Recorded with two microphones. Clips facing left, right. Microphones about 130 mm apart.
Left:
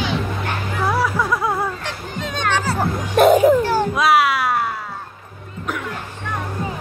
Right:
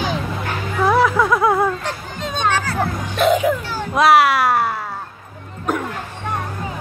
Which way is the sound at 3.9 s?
55° right (ahead or behind).